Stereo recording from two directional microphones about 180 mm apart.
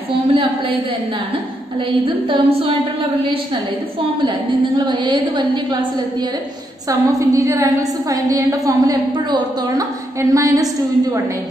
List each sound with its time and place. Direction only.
0.3 s a woman's voice: 30° right (ahead or behind)
1.9 s a woman's voice: 30° right (ahead or behind)
4.0 s a woman's voice: 30° right (ahead or behind)
6.9 s a woman's voice: 20° right (ahead or behind)